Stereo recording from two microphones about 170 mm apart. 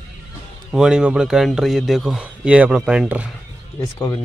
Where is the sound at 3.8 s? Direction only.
15° left (ahead or behind).